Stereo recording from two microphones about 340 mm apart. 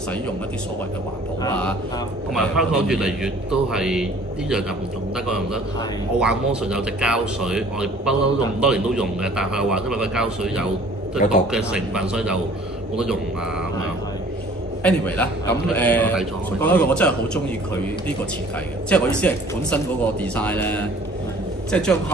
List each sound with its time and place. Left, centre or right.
1.4 s speech: centre
11.2 s a man's voice: left
11.5 s speech: centre
14.8 s speech: centre
18.9 s a man's voice: centre